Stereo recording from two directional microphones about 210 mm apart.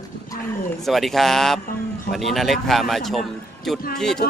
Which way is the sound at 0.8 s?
Centre (ahead or behind).